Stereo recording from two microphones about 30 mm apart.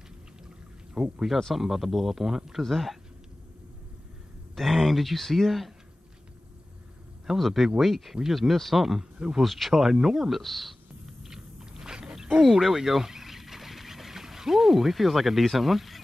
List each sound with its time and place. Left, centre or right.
1.0 s speech: centre
2.7 s speech: centre
4.6 s speech: centre
7.3 s speech: centre
10.4 s speech: centre
11.1 s biting: centre
12.4 s speech: centre